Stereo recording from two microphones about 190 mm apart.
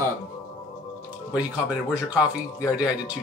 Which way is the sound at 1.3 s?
5° right (ahead or behind).